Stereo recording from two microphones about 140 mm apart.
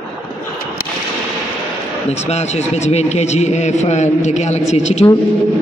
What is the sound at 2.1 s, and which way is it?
A man's voice, 50° left (ahead or behind).